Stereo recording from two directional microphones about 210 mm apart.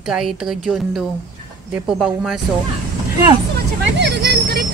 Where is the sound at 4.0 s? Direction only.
55° right (ahead or behind).